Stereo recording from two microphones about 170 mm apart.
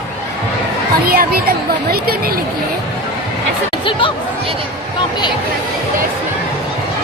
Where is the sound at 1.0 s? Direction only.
65° right (ahead or behind).